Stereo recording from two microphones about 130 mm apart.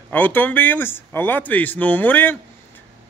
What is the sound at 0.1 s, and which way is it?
Speech, 15° left (ahead or behind).